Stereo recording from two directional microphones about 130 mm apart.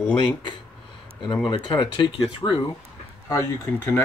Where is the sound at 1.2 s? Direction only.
40° left (ahead or behind).